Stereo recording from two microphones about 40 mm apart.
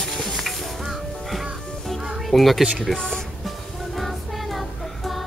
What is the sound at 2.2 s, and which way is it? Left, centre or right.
Speech, centre.